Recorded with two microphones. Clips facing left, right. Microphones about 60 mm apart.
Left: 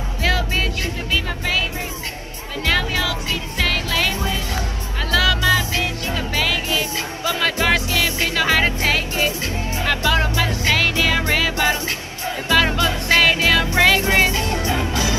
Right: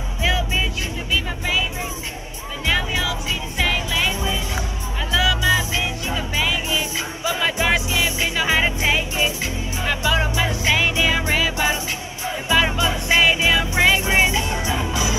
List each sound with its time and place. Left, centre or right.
2.6 s music: centre